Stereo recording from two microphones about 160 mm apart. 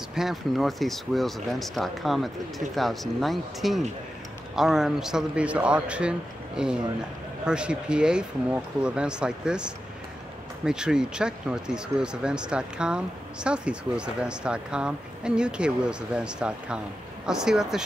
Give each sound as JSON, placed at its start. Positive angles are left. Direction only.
{"t": 0.1, "sound": "speech", "side_deg": 0}